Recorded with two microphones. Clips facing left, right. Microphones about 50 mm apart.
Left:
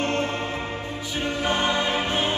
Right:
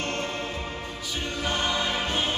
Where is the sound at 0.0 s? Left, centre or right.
Left.